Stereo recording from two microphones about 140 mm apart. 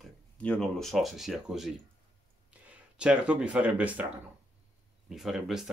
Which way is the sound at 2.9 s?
5° right (ahead or behind).